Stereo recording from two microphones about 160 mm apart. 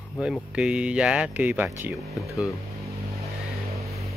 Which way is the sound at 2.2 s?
Centre (ahead or behind).